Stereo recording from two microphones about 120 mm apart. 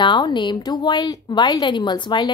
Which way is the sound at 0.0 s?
40° left (ahead or behind).